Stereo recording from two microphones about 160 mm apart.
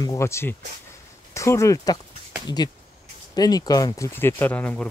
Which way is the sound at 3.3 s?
25° left (ahead or behind).